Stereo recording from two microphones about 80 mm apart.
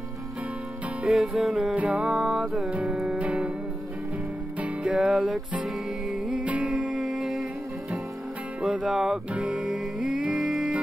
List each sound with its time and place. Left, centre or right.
1.0 s music: centre
2.7 s music: centre
4.6 s music: centre
8.5 s music: centre